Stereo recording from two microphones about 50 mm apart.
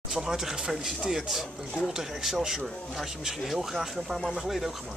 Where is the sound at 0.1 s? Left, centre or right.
Centre.